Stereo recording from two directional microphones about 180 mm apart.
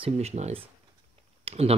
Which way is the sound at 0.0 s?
35° right (ahead or behind).